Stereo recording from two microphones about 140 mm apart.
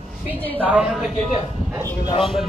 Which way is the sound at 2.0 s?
35° left (ahead or behind).